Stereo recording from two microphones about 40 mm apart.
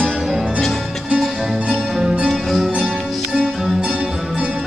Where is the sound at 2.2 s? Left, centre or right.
Centre.